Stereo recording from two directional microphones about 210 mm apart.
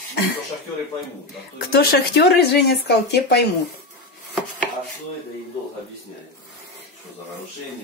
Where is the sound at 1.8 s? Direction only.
50° left (ahead or behind).